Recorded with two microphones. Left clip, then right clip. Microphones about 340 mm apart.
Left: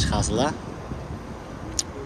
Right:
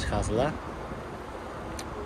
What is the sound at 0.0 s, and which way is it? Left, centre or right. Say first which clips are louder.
Speech: left 4 dB; centre.